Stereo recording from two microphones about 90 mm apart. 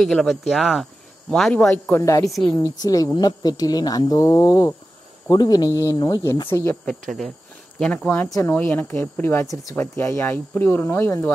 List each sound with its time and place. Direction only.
0.0 s speech: 5° left (ahead or behind)
2.0 s speech: 35° left (ahead or behind)
5.9 s speech: 45° left (ahead or behind)
6.5 s speech: 25° left (ahead or behind)
7.1 s speech: 5° left (ahead or behind)
8.4 s speech: 25° left (ahead or behind)